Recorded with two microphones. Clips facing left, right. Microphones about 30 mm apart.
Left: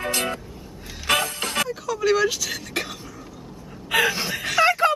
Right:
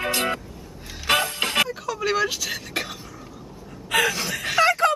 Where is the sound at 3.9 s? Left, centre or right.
Centre.